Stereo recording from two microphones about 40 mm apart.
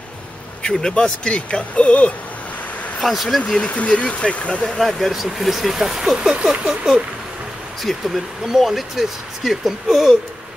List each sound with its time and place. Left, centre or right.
0.6 s speech: centre
3.0 s speech: centre
3.5 s speech: left
4.7 s speech: centre
6.3 s speech: right
7.8 s speech: centre